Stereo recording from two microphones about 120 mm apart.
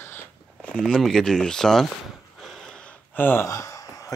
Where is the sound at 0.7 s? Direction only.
5° left (ahead or behind).